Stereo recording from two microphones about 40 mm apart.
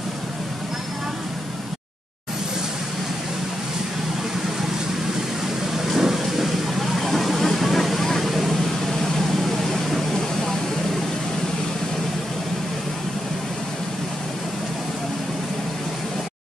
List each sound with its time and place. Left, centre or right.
5.9 s vehicle: centre